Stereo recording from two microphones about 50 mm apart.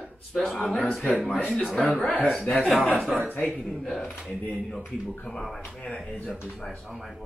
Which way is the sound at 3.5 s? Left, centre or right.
Centre.